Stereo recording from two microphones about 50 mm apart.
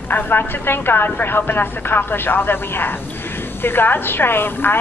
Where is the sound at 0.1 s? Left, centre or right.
Left.